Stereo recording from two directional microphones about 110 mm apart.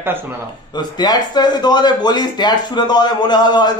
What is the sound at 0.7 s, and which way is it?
Speech, 40° left (ahead or behind).